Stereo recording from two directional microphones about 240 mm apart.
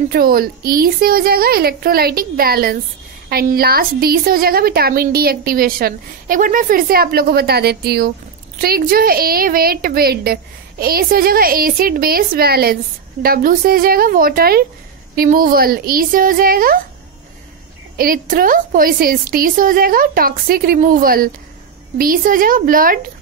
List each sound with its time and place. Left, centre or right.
0.1 s a woman's voice: right
17.9 s a woman's voice: right